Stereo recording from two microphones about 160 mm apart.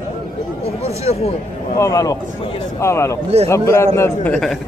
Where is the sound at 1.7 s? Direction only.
20° left (ahead or behind).